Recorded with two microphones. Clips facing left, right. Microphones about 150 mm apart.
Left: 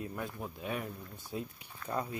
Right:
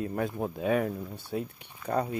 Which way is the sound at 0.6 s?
90° right.